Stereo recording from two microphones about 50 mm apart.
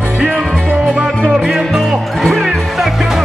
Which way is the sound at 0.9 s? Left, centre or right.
Centre.